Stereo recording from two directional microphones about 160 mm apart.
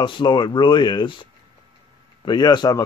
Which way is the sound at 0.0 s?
30° left (ahead or behind).